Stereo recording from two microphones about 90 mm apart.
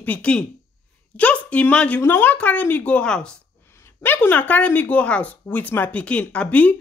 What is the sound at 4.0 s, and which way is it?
Speech, 20° left (ahead or behind).